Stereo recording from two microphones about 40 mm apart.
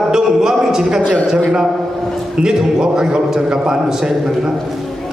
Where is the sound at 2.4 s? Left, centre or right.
Centre.